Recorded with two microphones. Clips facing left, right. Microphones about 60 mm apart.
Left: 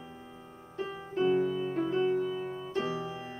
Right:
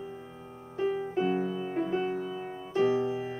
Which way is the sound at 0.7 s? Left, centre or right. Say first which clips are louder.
Right 4 dB; centre.